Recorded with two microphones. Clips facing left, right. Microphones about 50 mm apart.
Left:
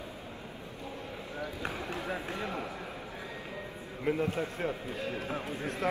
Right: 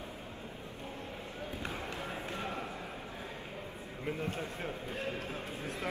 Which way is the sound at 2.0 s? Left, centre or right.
Left.